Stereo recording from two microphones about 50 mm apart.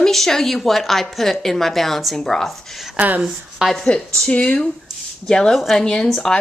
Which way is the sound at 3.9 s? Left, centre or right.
Centre.